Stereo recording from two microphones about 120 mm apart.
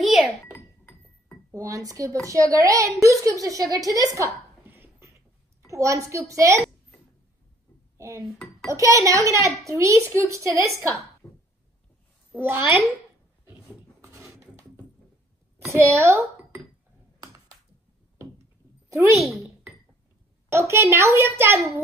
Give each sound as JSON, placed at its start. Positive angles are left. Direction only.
{"t": 0.0, "sound": "a sound", "side_deg": 0}
{"t": 1.5, "sound": "a woman's voice", "side_deg": -30}
{"t": 4.6, "sound": "beatboxing", "side_deg": -15}
{"t": 5.7, "sound": "a woman's voice", "side_deg": -25}
{"t": 8.0, "sound": "dishes", "side_deg": -25}
{"t": 8.6, "sound": "a woman's voice", "side_deg": -25}
{"t": 12.3, "sound": "a child's voice", "side_deg": -15}
{"t": 14.0, "sound": "a sound", "side_deg": -25}
{"t": 15.6, "sound": "chink", "side_deg": -25}
{"t": 18.9, "sound": "a child's voice", "side_deg": -25}
{"t": 20.5, "sound": "a woman's voice", "side_deg": -20}